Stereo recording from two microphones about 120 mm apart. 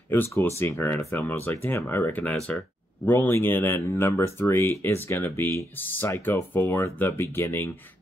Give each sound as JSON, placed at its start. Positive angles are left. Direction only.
{"t": 0.1, "sound": "speech", "side_deg": 15}